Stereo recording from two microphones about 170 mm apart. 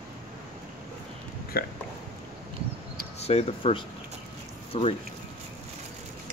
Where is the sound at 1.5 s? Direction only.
60° left (ahead or behind).